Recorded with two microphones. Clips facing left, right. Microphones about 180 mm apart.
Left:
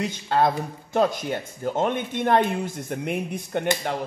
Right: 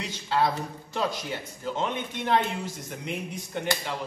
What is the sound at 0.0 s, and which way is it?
A man's voice, 50° left (ahead or behind).